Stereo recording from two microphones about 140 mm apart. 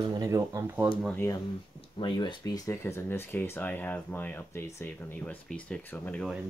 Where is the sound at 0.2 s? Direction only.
20° right (ahead or behind).